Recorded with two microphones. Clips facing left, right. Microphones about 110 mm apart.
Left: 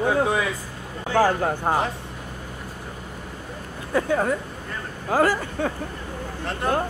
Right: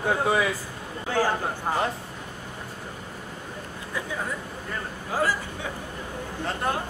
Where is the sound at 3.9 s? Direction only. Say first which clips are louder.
Left 10 dB; 60° left (ahead or behind).